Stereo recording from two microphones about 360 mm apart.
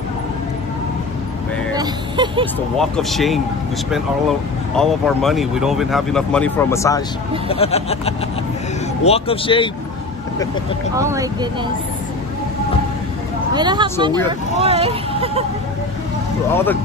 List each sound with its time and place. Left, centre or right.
1.8 s speech: centre
2.8 s speech: centre
4.7 s speech: centre
11.0 s speech: centre
13.6 s speech: centre